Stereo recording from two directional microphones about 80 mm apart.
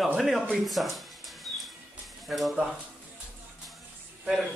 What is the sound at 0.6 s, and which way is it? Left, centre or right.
Music, centre.